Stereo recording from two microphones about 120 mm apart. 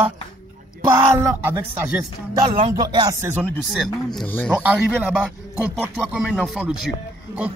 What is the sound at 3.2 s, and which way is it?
Speech, 20° right (ahead or behind).